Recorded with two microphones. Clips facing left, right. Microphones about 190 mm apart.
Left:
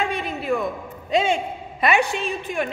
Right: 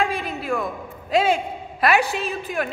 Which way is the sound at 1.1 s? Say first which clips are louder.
Right 1 dB; 5° right (ahead or behind).